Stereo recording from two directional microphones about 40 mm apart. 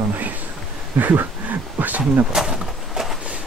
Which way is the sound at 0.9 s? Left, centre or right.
Right.